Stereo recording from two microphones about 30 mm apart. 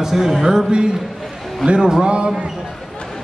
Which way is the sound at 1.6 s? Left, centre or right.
Right.